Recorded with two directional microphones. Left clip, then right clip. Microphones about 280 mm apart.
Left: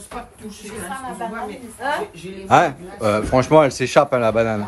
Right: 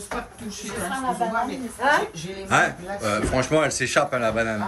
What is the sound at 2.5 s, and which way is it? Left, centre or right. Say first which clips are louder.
Speech: left 6 dB; centre.